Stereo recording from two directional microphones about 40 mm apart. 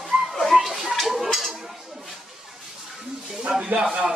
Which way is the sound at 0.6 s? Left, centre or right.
Centre.